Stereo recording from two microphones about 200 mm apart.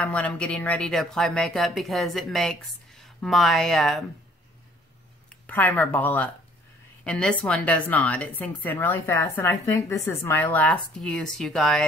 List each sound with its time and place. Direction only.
0.0 s speech: 5° left (ahead or behind)
5.5 s speech: 10° left (ahead or behind)